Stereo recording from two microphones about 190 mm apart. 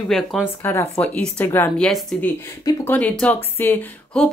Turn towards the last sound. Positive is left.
turn(degrees=5)  # may be behind; listen again after turning